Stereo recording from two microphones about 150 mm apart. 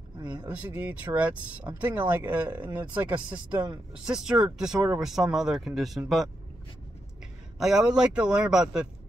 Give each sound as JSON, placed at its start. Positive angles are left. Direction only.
{"t": 0.2, "sound": "speech", "side_deg": -30}
{"t": 0.5, "sound": "speech", "side_deg": -10}
{"t": 7.5, "sound": "speech", "side_deg": -5}